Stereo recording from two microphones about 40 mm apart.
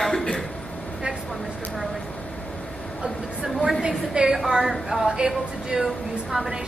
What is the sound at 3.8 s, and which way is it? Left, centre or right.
Speech, right.